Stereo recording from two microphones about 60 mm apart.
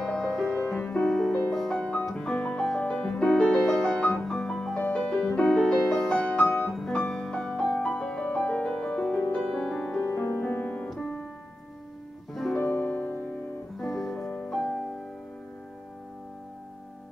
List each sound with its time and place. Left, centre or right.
0.0 s music: centre
0.6 s music: centre
1.8 s music: centre
2.0 s piano: centre
2.8 s music: left
4.7 s music: left
6.9 s music: centre
10.0 s music: left
10.9 s piano: centre
12.5 s music: left
13.7 s music: centre